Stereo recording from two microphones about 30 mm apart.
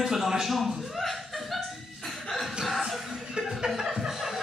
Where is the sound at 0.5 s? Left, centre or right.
Centre.